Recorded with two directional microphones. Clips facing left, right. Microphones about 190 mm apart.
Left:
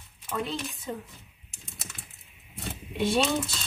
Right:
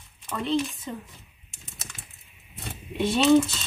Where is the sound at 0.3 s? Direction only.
5° left (ahead or behind).